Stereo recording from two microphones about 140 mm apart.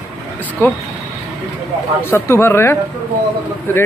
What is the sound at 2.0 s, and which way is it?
A man's voice, 15° left (ahead or behind).